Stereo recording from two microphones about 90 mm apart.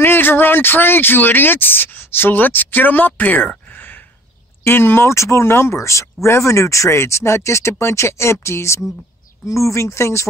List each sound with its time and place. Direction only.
0.0 s speech: 25° left (ahead or behind)